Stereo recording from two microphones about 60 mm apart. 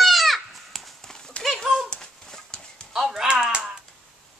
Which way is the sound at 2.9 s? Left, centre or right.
Centre.